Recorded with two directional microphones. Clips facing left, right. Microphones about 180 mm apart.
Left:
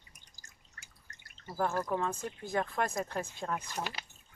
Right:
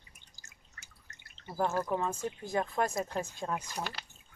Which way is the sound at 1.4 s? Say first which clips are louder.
Right 1 dB; 20° right (ahead or behind).